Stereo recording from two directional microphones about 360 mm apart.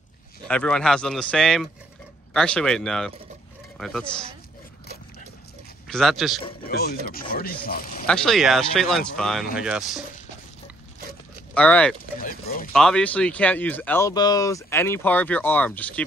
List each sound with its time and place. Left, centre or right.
0.5 s speech: centre
5.9 s speech: centre
6.7 s speech: left
8.1 s speech: centre
11.5 s speech: centre
12.2 s a sound: left
12.7 s speech: centre